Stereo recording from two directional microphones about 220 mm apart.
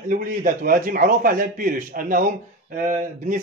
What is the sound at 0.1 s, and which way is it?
Speech, 40° right (ahead or behind).